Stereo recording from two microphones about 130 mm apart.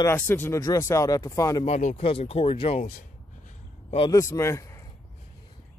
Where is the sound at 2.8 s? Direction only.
90° left.